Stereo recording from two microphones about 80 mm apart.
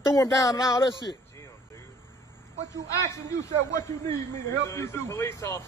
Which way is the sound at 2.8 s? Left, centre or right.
Left.